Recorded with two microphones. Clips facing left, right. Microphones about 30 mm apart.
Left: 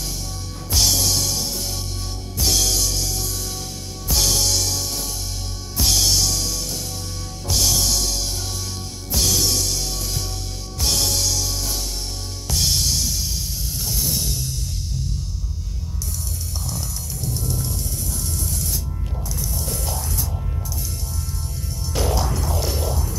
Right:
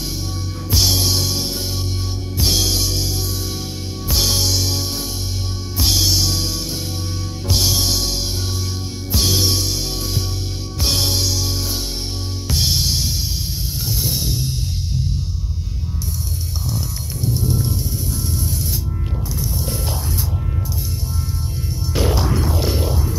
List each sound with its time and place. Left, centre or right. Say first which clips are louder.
0.7 s music: right 2 dB; centre
4.1 s music: right 1 dB; centre
16.6 s music: right 5 dB; right
19.3 s music: right 3 dB; right
21.9 s music: right 3 dB; right